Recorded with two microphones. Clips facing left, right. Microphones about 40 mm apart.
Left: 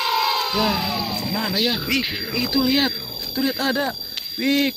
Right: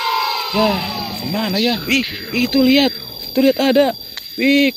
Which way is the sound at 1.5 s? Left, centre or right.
Centre.